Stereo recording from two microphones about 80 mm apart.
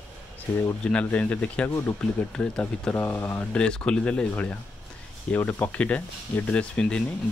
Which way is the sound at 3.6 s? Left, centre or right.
Centre.